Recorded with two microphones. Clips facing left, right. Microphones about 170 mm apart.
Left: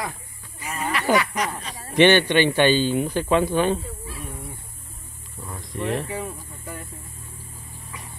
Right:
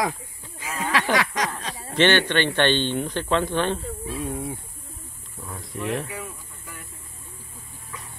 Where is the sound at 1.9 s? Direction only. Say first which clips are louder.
Left 4 dB; 15° left (ahead or behind).